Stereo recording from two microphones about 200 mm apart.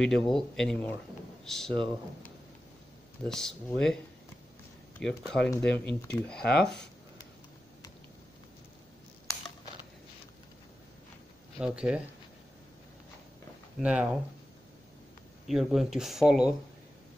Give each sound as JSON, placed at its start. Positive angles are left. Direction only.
{"t": 0.0, "sound": "speech", "side_deg": 5}
{"t": 3.3, "sound": "speech", "side_deg": 5}
{"t": 5.0, "sound": "speech", "side_deg": 5}
{"t": 11.5, "sound": "speech", "side_deg": -5}
{"t": 13.7, "sound": "speech", "side_deg": -5}
{"t": 15.4, "sound": "speech", "side_deg": 0}